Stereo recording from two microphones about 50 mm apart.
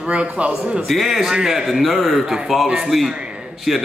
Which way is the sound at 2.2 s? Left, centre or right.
Centre.